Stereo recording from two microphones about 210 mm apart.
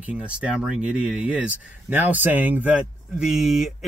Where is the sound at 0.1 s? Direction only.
5° right (ahead or behind).